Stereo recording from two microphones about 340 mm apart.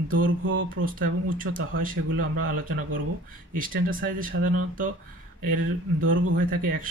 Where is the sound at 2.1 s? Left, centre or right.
Right.